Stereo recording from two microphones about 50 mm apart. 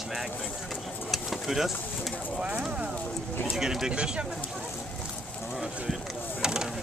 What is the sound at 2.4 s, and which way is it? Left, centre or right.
Speech, right.